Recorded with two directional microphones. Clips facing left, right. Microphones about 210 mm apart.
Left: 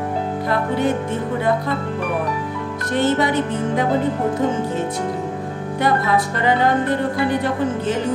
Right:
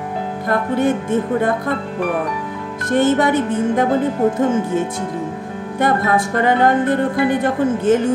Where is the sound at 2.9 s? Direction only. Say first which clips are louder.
Right 4 dB; 50° right (ahead or behind).